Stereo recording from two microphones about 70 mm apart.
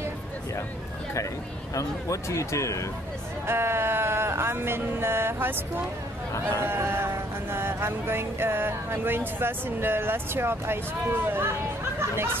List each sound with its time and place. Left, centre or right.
1.8 s speech: left
3.4 s speech: right
6.6 s speech: right